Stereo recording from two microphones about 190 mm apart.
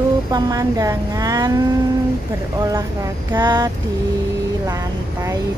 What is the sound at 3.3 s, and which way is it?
Speech, 20° right (ahead or behind).